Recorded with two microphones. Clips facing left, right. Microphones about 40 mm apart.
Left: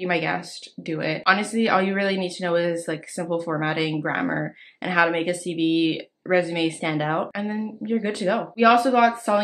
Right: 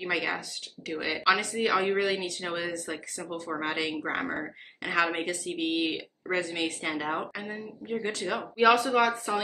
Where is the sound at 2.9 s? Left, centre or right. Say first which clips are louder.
Left 8 dB; left.